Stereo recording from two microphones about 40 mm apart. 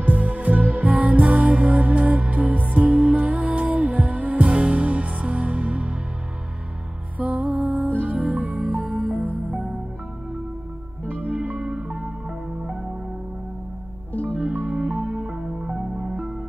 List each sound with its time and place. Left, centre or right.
0.0 s music: right
4.5 s music: right
7.2 s music: right
9.5 s music: right
11.1 s music: right
11.6 s music: right
14.3 s music: right